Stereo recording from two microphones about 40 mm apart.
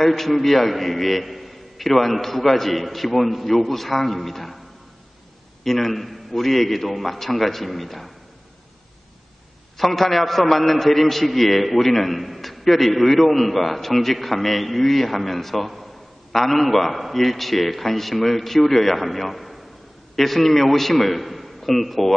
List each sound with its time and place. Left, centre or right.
0.0 s a man's voice: centre
5.6 s a man's voice: centre
9.8 s a man's voice: centre